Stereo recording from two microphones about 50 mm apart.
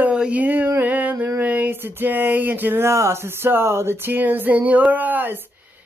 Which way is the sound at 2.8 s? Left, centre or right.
Right.